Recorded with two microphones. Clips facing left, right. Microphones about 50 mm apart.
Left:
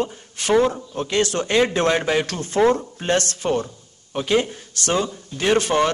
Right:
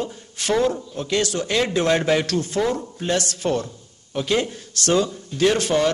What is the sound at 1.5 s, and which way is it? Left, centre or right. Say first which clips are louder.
Speech: left 3 dB; left.